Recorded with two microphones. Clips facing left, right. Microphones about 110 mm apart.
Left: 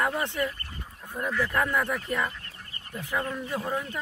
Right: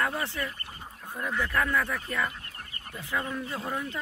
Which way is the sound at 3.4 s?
15° left (ahead or behind).